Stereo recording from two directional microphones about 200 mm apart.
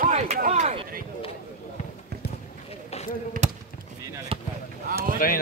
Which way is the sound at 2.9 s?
35° left (ahead or behind).